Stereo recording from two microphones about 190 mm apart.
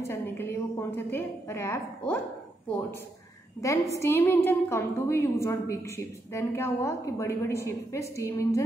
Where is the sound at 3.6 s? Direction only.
15° left (ahead or behind).